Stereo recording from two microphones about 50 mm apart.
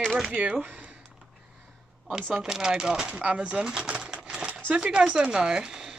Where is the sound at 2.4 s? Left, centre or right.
Centre.